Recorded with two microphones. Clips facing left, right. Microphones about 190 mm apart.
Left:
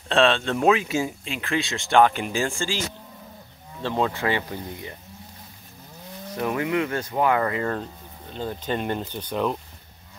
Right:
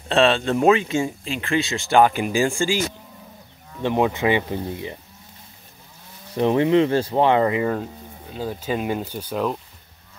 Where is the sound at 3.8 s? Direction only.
15° right (ahead or behind).